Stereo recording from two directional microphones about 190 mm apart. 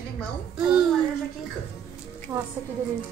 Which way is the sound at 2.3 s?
15° right (ahead or behind).